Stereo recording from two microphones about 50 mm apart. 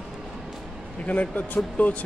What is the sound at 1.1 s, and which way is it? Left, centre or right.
Speech, left.